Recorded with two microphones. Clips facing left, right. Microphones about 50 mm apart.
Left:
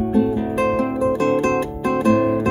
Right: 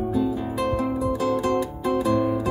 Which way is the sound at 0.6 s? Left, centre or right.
Left.